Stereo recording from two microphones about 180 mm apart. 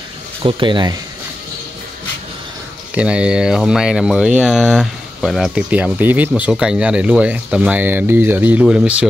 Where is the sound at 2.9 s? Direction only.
5° right (ahead or behind).